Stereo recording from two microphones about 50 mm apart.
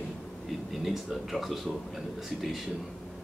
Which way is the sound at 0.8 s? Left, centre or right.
Centre.